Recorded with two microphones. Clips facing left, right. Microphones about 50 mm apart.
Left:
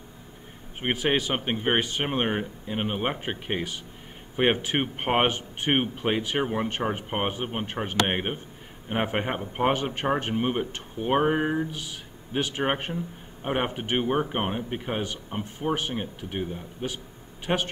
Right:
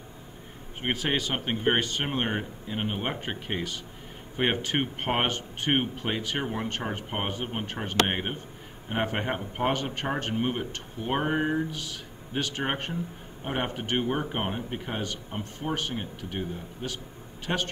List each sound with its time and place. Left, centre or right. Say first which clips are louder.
0.7 s speech: left 3 dB; centre